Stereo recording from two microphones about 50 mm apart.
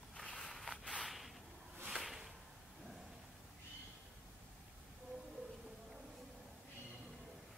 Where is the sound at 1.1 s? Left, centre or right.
Centre.